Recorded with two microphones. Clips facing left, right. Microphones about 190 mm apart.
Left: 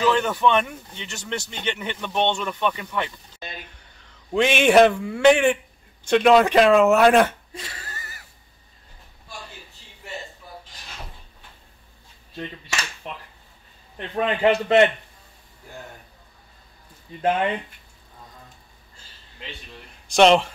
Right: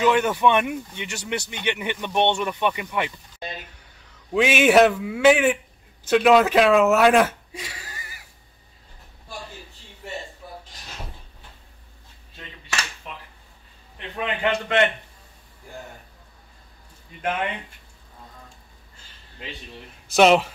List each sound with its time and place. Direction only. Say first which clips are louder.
0.0 s speech: right 1 dB; 15° right (ahead or behind)
13.9 s a man's voice: left 5 dB; 35° left (ahead or behind)
20.1 s speech: left 1 dB; 5° right (ahead or behind)